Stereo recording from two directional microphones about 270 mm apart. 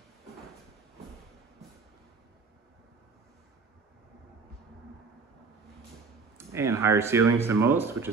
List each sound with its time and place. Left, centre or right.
6.3 s speech: centre